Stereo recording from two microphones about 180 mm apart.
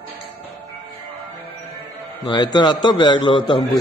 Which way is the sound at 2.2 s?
25° left (ahead or behind).